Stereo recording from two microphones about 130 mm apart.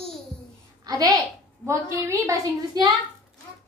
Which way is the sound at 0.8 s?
30° right (ahead or behind).